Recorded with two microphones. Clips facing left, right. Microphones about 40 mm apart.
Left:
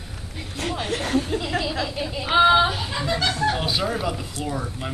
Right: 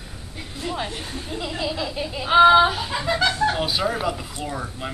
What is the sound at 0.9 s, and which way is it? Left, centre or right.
Speech, left.